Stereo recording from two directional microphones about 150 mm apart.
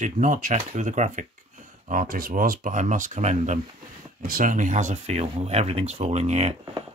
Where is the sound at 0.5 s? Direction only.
50° right (ahead or behind).